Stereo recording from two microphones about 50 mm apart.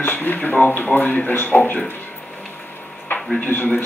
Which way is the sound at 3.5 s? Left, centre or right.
Left.